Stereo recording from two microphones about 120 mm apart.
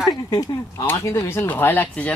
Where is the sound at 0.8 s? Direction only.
20° left (ahead or behind).